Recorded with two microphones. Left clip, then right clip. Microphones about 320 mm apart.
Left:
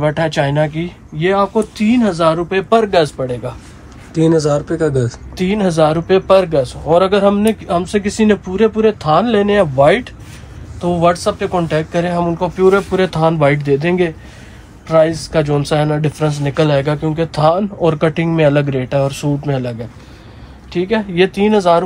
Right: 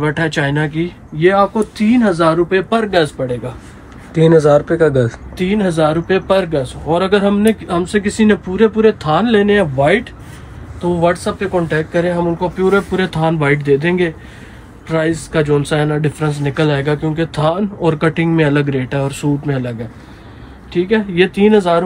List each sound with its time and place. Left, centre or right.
0.0 s speech: left
4.1 s speech: centre
5.4 s speech: centre
20.7 s speech: left